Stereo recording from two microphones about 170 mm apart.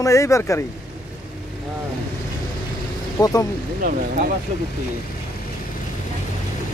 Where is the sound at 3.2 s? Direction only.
20° left (ahead or behind).